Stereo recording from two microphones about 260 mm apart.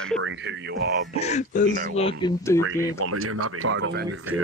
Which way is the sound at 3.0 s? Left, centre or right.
Right.